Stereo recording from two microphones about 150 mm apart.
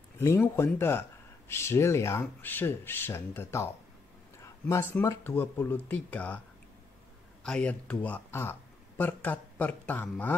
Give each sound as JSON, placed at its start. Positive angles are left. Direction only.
{"t": 0.2, "sound": "speech", "side_deg": 15}
{"t": 7.4, "sound": "speech", "side_deg": 5}